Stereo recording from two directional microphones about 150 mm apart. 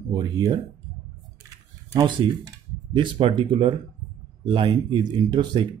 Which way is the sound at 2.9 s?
30° right (ahead or behind).